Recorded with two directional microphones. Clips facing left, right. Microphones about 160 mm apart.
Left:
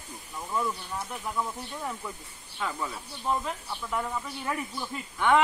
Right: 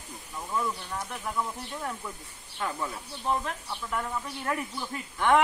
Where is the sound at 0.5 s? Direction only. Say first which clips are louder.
Even; 5° left (ahead or behind).